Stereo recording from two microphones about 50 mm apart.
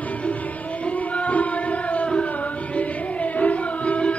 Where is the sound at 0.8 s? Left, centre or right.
Left.